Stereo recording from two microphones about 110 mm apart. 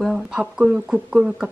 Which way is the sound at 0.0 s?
5° right (ahead or behind).